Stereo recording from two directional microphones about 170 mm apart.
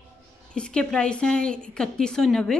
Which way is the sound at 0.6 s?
5° left (ahead or behind).